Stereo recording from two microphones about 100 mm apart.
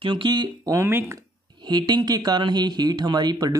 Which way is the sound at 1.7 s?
45° right (ahead or behind).